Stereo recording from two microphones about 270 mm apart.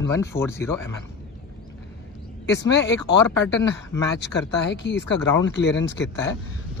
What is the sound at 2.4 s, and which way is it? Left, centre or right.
Speech, left.